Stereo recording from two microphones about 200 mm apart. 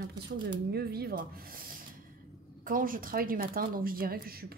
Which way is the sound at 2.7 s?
45° right (ahead or behind).